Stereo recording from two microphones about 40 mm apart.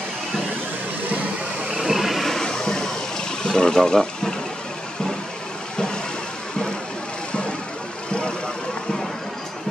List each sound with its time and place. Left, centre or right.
1.7 s train: centre
2.2 s a sound: centre
3.4 s speech: centre
8.1 s vehicle: left